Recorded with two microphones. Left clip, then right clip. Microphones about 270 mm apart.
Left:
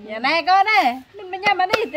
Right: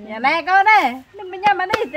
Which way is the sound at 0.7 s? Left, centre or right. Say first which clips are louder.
Right 1 dB; centre.